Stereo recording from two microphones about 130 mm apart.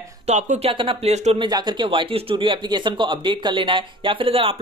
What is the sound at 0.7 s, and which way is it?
Speech, 45° right (ahead or behind).